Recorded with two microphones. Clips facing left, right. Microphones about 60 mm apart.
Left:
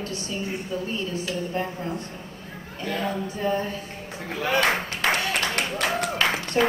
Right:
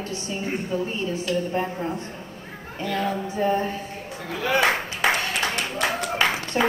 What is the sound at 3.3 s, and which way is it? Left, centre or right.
Speech, right.